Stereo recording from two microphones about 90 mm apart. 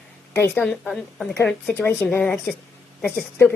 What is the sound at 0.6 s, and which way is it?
Speech, 5° left (ahead or behind).